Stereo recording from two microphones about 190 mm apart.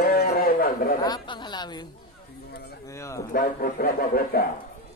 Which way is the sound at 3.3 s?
45° left (ahead or behind).